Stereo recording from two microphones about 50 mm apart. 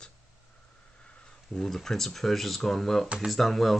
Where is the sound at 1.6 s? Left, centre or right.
Centre.